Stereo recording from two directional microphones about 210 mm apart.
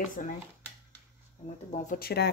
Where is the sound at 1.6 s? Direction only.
35° left (ahead or behind).